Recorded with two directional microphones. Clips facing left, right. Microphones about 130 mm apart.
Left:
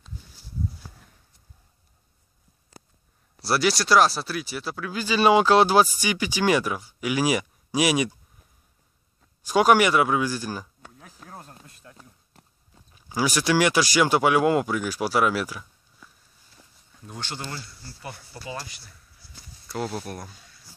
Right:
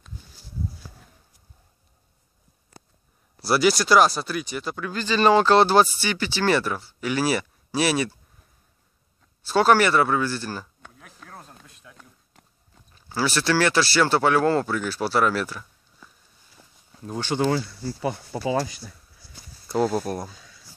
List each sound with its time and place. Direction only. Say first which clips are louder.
3.3 s speech: right 3 dB; centre (ahead or behind)
9.4 s speech: even; 15° left (ahead or behind)
11.0 s a sound: even; 35° left (ahead or behind)
12.9 s speech: even; 15° left (ahead or behind)
16.6 s walk: right 2 dB; 5° right (ahead or behind)
16.9 s speech: right 9 dB; 35° right (ahead or behind)
18.3 s speech: right 13 dB; 90° right
19.7 s speech: right 8 dB; 35° right (ahead or behind)